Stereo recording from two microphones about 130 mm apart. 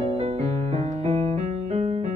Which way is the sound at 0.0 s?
55° right (ahead or behind).